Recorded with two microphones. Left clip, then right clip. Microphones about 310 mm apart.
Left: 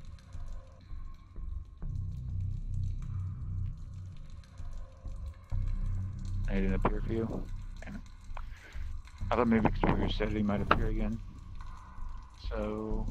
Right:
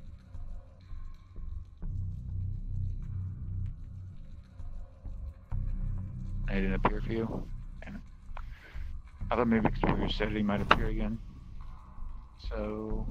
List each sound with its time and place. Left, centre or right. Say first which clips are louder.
1.8 s music: even; centre
6.4 s a sound: right 2 dB; centre
9.3 s speech: even; centre
12.4 s speech: even; centre